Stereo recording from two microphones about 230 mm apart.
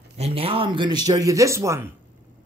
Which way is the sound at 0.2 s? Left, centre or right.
Right.